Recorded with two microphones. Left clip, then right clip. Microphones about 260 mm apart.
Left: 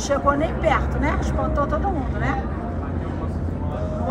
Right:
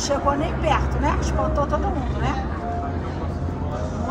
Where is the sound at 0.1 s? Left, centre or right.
Centre.